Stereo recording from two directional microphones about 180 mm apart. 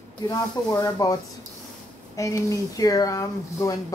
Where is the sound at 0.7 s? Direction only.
20° left (ahead or behind).